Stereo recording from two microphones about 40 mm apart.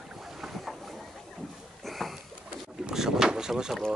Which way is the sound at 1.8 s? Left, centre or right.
Centre.